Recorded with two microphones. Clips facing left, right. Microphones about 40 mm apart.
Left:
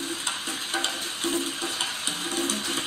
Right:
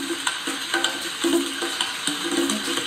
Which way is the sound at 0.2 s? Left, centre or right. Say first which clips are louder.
Right 4 dB; right.